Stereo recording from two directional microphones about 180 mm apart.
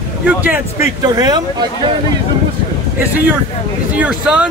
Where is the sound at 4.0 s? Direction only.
5° right (ahead or behind).